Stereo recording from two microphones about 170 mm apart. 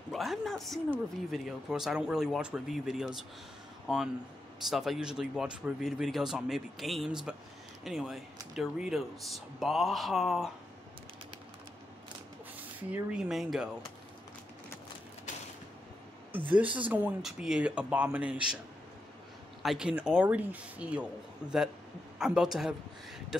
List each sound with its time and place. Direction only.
0.1 s speech: centre (ahead or behind)
12.9 s speech: 5° right (ahead or behind)
16.5 s speech: 10° right (ahead or behind)
19.6 s a man's voice: centre (ahead or behind)